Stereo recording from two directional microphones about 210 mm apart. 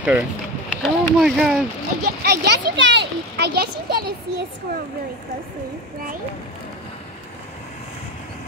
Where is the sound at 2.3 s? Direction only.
55° right (ahead or behind).